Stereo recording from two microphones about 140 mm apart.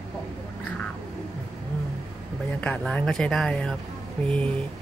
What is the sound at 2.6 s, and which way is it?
Speech, 10° left (ahead or behind).